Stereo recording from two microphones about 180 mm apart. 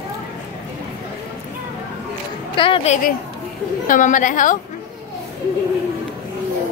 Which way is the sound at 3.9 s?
45° left (ahead or behind).